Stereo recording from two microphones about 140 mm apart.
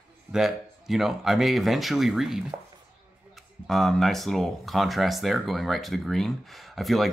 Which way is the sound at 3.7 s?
Centre (ahead or behind).